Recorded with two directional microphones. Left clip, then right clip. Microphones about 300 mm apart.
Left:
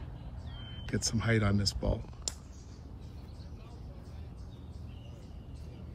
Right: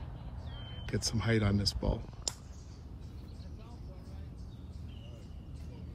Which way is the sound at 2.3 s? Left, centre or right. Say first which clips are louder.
Right 1 dB; right.